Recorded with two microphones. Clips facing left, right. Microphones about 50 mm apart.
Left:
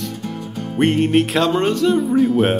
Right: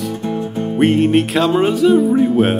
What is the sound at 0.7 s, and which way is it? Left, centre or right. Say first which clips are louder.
Speech: right 2 dB; centre.